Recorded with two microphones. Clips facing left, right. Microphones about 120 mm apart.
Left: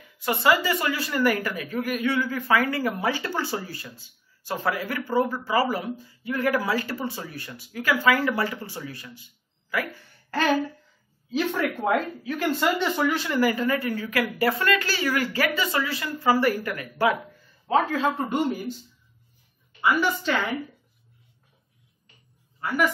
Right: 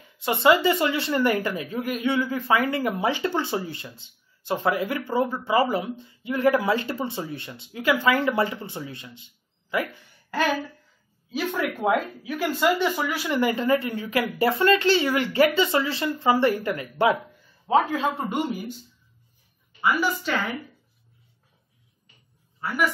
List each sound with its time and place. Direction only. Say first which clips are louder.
0.0 s a woman's voice: right 2 dB; 25° right (ahead or behind)
10.3 s speech: left 2 dB; 10° right (ahead or behind)
13.3 s a woman's voice: right 1 dB; 25° right (ahead or behind)